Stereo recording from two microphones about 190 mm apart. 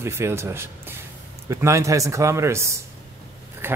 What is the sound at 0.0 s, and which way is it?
Speech, 15° right (ahead or behind).